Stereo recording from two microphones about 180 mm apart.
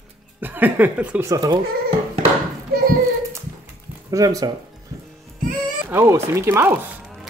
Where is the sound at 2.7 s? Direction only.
55° right (ahead or behind).